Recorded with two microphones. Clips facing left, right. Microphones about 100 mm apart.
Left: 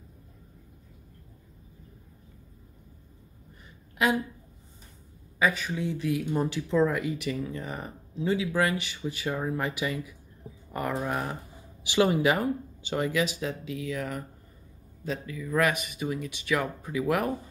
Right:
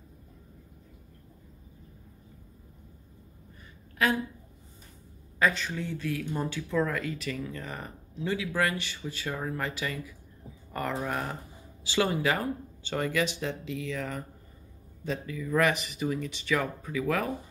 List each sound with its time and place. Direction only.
5.4 s speech: 5° left (ahead or behind)